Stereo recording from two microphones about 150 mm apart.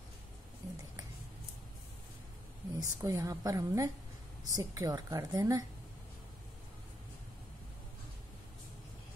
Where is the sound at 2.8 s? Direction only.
20° right (ahead or behind).